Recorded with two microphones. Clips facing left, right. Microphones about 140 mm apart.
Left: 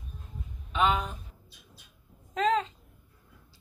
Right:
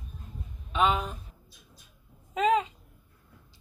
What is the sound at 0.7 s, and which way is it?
Speech, centre (ahead or behind).